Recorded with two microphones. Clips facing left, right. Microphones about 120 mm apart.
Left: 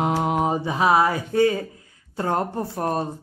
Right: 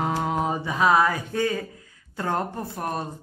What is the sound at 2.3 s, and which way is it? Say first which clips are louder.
Speech: left 3 dB; 30° left (ahead or behind).